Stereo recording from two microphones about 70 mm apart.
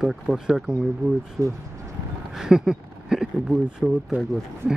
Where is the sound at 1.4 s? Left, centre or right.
Right.